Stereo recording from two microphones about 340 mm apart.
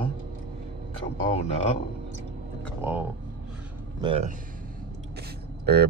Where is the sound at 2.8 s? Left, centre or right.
Centre.